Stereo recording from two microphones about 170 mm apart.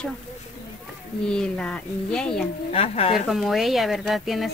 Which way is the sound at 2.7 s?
35° left (ahead or behind).